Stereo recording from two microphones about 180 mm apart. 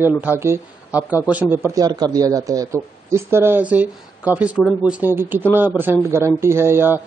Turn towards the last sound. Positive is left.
turn(degrees=-10)  # may be behind; listen again after turning